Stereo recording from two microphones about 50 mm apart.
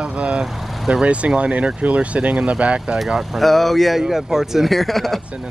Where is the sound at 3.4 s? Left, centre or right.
Centre.